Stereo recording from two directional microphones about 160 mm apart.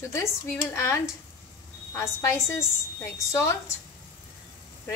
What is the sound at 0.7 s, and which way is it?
Speech, 15° left (ahead or behind).